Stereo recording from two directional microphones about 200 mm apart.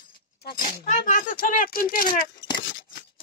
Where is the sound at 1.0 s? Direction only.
40° left (ahead or behind).